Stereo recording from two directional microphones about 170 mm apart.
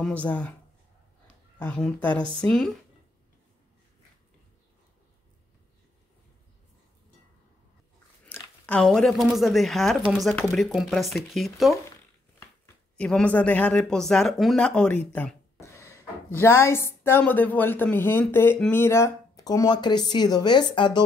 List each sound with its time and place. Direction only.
0.0 s speech: 10° left (ahead or behind)
1.6 s speech: 10° left (ahead or behind)
8.3 s speech: 5° left (ahead or behind)
12.9 s speech: 5° left (ahead or behind); by 21.0 s 25° left (ahead or behind)